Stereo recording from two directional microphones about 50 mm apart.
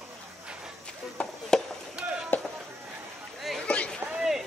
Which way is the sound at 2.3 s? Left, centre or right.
Left.